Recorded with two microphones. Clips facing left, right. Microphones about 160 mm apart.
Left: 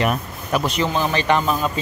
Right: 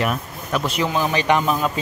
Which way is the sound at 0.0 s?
5° left (ahead or behind).